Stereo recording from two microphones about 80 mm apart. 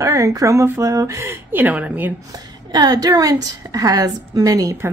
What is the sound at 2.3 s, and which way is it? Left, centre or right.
A woman's voice, right.